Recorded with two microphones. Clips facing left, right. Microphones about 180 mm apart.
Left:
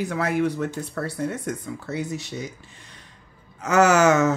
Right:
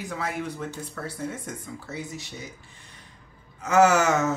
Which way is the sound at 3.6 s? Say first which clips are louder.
Left 2 dB; 75° left (ahead or behind).